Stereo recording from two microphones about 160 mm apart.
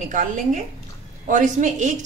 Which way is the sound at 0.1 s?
50° right (ahead or behind).